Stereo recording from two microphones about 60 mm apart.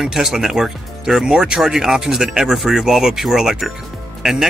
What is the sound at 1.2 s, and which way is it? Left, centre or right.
Speech, centre.